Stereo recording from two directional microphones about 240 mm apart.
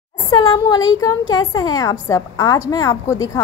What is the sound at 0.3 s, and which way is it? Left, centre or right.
A woman's voice, centre.